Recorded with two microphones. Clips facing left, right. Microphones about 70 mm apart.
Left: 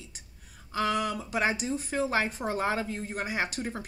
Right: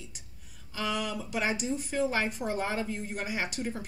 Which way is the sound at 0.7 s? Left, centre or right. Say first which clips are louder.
Left 4 dB; left.